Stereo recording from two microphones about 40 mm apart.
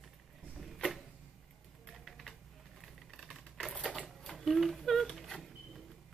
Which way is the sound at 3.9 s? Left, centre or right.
Left.